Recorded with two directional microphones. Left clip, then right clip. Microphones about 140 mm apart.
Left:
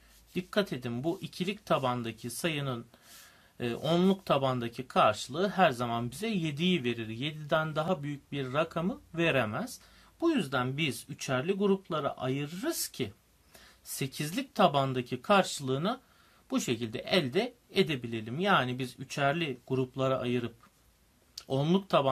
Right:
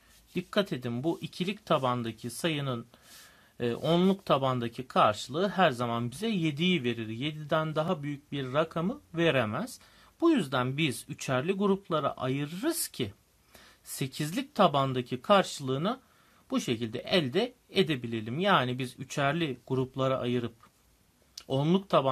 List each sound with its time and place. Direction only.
0.3 s speech: 40° right (ahead or behind)